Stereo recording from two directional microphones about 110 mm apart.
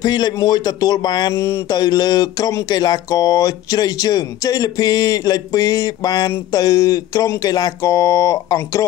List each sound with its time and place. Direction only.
0.0 s speech: 40° left (ahead or behind)
1.3 s a sound: 25° left (ahead or behind)
1.7 s speech: 40° left (ahead or behind)